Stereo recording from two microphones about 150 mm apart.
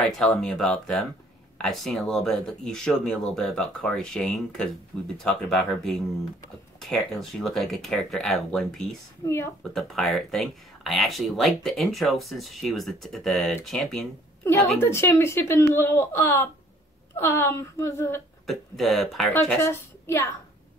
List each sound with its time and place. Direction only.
0.2 s speech: centre (ahead or behind)
9.2 s speech: 15° left (ahead or behind)
9.8 s speech: centre (ahead or behind)
14.4 s a woman's voice: 20° left (ahead or behind)
18.5 s speech: centre (ahead or behind)
19.6 s a woman's voice: 15° left (ahead or behind)